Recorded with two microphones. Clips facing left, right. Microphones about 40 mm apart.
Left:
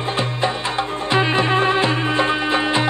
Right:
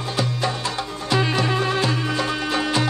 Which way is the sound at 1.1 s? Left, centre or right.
Left.